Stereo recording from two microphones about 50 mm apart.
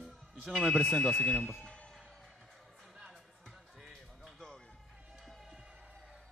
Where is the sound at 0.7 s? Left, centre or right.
Centre.